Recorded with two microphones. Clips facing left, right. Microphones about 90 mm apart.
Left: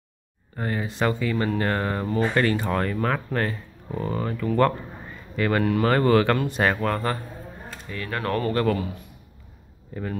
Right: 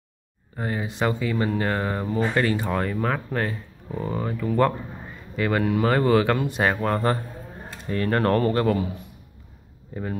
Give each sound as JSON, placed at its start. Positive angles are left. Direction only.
{"t": 0.6, "sound": "speech", "side_deg": -10}
{"t": 7.8, "sound": "speech", "side_deg": -40}